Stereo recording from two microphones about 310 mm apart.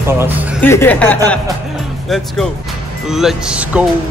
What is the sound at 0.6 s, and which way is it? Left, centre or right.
Speech, centre.